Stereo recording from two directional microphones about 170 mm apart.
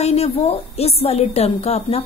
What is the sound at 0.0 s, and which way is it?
Speech, 35° left (ahead or behind).